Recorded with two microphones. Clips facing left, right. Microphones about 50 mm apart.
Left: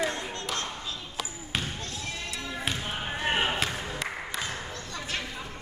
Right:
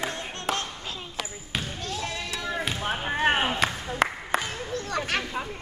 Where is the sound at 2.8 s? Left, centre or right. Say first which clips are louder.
Right 6 dB; right.